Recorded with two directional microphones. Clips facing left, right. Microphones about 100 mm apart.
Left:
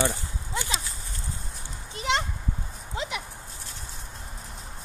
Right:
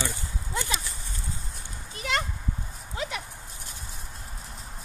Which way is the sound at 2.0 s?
25° left (ahead or behind).